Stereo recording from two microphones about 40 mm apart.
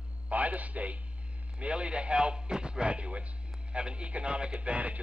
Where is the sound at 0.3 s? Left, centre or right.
Right.